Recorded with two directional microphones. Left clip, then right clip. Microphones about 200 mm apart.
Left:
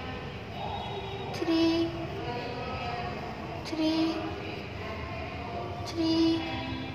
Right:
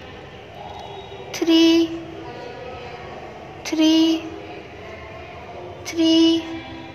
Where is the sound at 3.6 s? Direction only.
40° right (ahead or behind).